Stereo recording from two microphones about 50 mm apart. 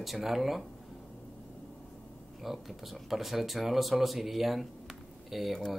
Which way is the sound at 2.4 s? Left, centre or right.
Centre.